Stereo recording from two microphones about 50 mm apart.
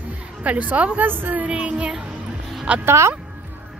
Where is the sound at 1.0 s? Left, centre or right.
Right.